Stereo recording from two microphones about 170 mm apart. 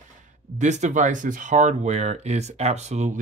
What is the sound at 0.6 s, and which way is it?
Speech, 45° right (ahead or behind).